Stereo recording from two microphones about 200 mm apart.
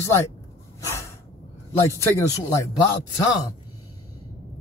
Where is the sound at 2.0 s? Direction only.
15° left (ahead or behind).